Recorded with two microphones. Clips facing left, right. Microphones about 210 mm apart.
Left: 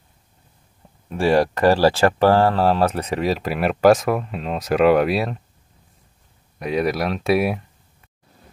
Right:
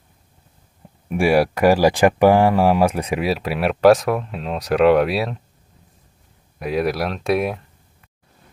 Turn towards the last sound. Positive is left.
turn(degrees=5)  # may be behind; listen again after turning